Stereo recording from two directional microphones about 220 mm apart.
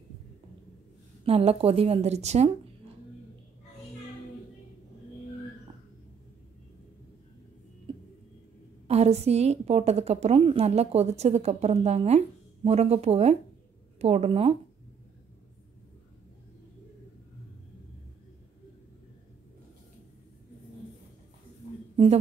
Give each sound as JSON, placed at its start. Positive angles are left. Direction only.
{"t": 1.2, "sound": "a woman's voice", "side_deg": -25}
{"t": 8.8, "sound": "a woman's voice", "side_deg": -30}
{"t": 21.9, "sound": "a sound", "side_deg": -25}